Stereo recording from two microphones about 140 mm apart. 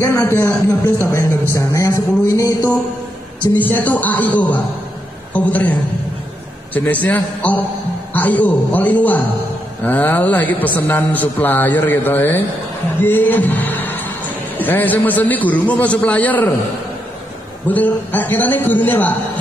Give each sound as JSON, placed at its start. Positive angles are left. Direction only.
{"t": 0.0, "sound": "a man's voice", "side_deg": 15}
{"t": 1.5, "sound": "music", "side_deg": 25}
{"t": 3.5, "sound": "a man's voice", "side_deg": 10}
{"t": 13.0, "sound": "music", "side_deg": 15}
{"t": 14.6, "sound": "a man's voice", "side_deg": 10}
{"t": 17.6, "sound": "a man's voice", "side_deg": 10}